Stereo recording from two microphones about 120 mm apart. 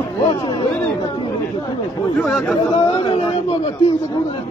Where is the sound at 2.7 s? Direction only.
45° left (ahead or behind).